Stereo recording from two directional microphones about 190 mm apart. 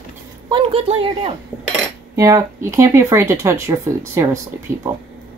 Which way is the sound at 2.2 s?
15° right (ahead or behind).